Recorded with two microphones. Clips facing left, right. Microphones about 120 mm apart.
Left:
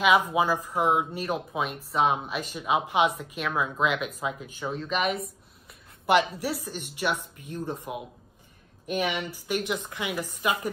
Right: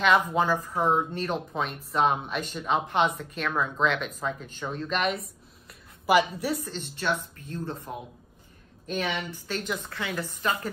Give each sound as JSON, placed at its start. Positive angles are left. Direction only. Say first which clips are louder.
{"t": 0.0, "sound": "speech", "louder": "left 1 dB", "side_deg": 10}
{"t": 5.7, "sound": "a sound", "louder": "even", "side_deg": -5}
{"t": 6.3, "sound": "speech", "louder": "right 1 dB", "side_deg": 5}